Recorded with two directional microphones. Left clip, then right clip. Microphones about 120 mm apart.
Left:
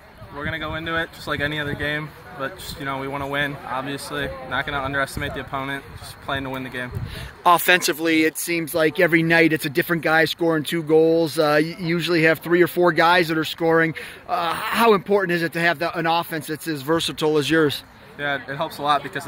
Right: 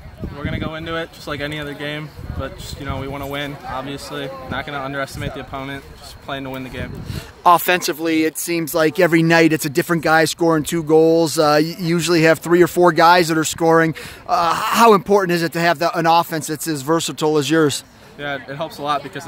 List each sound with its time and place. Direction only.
1.2 s speech: 10° right (ahead or behind)
3.0 s speech: 10° right (ahead or behind)
7.4 s speech: 30° right (ahead or behind)
8.5 s speech: 45° right (ahead or behind)
11.4 s speech: 35° right (ahead or behind)
18.2 s speech: 5° right (ahead or behind)